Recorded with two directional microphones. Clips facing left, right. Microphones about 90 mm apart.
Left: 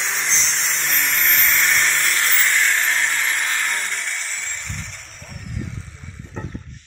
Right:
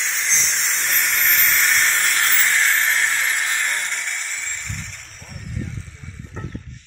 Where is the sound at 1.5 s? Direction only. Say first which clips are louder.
Even; 25° right (ahead or behind).